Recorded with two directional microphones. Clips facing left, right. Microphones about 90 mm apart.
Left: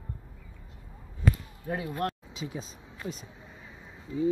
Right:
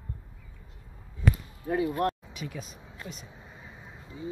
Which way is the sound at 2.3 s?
30° left (ahead or behind).